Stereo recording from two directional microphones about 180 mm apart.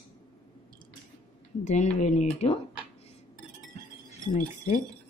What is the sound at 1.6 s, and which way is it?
Speech, 40° left (ahead or behind).